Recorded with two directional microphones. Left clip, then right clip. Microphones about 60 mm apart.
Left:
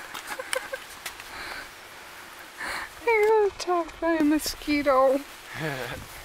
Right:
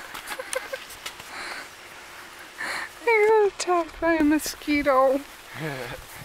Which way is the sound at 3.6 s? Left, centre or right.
Right.